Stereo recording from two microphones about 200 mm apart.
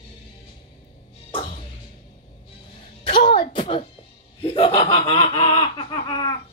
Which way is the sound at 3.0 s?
25° left (ahead or behind).